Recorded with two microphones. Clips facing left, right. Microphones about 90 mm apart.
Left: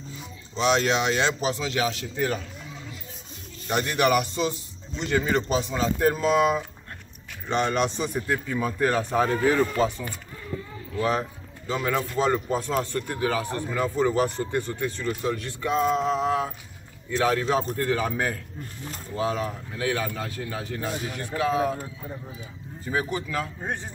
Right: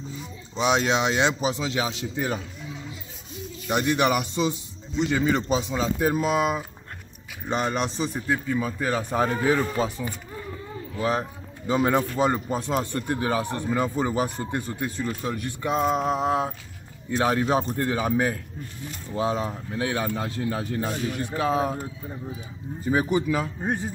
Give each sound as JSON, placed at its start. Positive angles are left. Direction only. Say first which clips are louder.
{"t": 0.6, "sound": "speech", "louder": "even", "side_deg": -15}
{"t": 3.6, "sound": "a man's voice", "louder": "right 1 dB", "side_deg": -15}
{"t": 22.8, "sound": "speech", "louder": "right 5 dB", "side_deg": -20}